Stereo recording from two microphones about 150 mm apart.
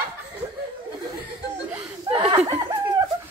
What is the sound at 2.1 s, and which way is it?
Laughter, 40° right (ahead or behind).